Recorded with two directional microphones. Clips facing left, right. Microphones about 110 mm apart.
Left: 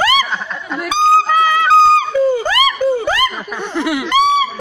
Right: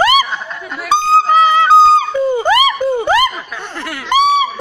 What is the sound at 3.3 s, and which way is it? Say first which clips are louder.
Snicker: left 5 dB; 15° left (ahead or behind).